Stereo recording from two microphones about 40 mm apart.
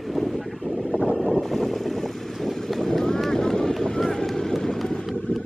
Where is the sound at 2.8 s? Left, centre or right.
Centre.